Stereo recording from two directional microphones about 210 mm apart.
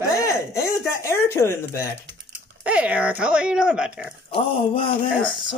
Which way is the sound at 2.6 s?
5° right (ahead or behind).